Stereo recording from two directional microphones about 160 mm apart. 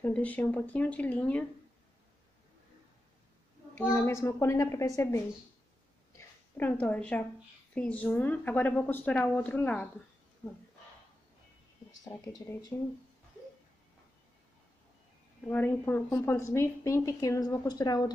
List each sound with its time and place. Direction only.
0.0 s speech: 10° left (ahead or behind)
3.7 s speech: 15° left (ahead or behind)
12.0 s speech: 25° left (ahead or behind)
12.7 s speech: 15° left (ahead or behind)
15.4 s a woman's voice: 15° left (ahead or behind)